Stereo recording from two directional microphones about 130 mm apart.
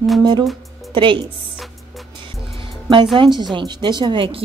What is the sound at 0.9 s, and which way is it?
Speech, 40° right (ahead or behind).